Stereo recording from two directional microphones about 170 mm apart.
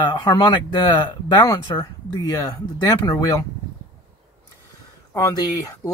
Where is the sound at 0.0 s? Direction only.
25° left (ahead or behind).